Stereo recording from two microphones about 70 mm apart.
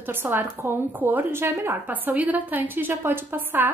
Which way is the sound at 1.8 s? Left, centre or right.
Right.